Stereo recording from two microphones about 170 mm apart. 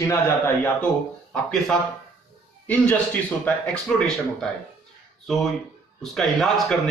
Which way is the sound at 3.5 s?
5° left (ahead or behind).